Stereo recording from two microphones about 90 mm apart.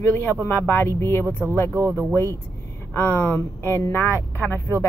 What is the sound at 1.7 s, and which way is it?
Speech, 30° right (ahead or behind).